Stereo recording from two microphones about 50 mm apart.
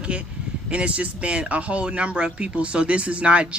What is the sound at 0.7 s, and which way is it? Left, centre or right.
Speech, right.